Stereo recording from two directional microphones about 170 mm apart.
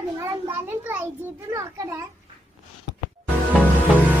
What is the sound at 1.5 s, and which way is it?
Speech, 20° right (ahead or behind).